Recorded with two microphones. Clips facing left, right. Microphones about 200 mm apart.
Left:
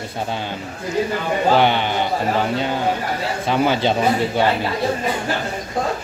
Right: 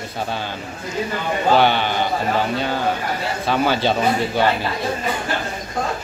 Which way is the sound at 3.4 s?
20° left (ahead or behind).